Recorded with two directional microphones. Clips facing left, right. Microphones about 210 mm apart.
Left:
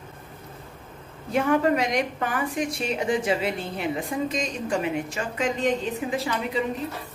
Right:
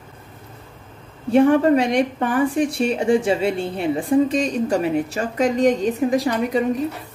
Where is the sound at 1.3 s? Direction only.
30° right (ahead or behind).